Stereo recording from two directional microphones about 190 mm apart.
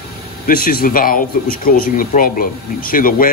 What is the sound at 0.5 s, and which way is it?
Speech, 50° left (ahead or behind).